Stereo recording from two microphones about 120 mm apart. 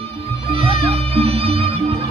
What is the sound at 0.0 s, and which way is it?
Music, 55° right (ahead or behind).